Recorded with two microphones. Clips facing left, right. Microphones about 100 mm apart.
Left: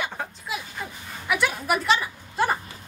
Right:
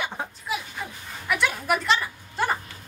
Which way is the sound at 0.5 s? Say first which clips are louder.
Right 1 dB; centre (ahead or behind).